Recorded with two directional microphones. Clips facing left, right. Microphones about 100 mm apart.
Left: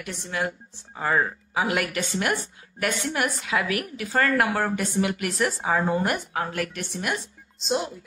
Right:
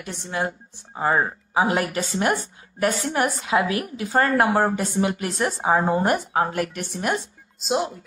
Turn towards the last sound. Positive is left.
turn(degrees=-45)  # may be behind; listen again after turning